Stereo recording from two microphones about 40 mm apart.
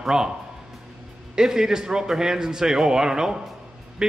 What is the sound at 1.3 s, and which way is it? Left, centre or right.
A man's voice, centre.